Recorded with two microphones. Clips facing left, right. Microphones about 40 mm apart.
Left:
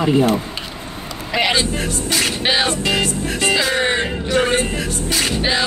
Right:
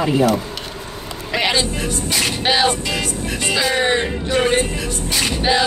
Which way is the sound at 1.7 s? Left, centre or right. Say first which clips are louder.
Left 1 dB; left.